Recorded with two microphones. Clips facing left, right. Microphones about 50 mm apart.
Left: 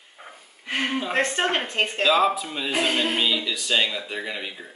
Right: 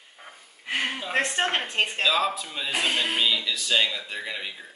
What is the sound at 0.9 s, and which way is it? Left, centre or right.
Speech, centre.